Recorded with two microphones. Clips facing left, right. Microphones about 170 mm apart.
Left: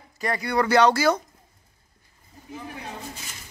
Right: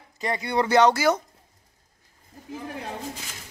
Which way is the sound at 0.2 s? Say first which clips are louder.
Left 1 dB; 20° right (ahead or behind).